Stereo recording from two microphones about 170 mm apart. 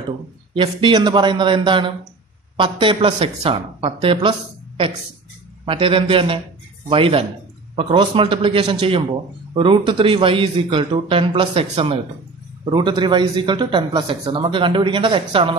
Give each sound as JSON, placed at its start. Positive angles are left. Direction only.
{"t": 0.6, "sound": "a man's voice", "side_deg": -30}